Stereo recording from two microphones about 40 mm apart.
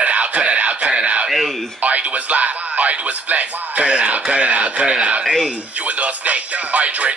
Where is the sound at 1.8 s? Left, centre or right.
Right.